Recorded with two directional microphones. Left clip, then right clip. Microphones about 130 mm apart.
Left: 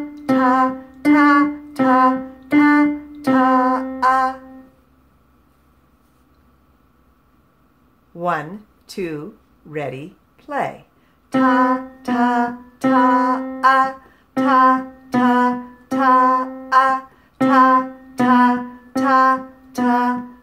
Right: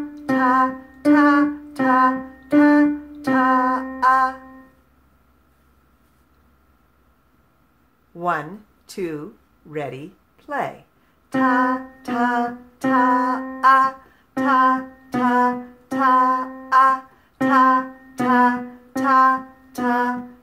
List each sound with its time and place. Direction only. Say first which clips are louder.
0.1 s music: left 2 dB; 5° left (ahead or behind)
8.2 s speech: left 2 dB; 15° right (ahead or behind)
11.2 s a sound: left 3 dB; 15° right (ahead or behind)